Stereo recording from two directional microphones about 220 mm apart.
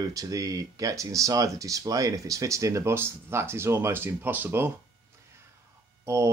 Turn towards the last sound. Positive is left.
turn(degrees=-15)  # may be behind; listen again after turning